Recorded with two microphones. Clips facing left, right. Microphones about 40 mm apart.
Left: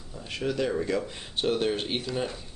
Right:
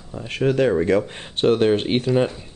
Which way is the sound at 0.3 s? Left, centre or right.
Right.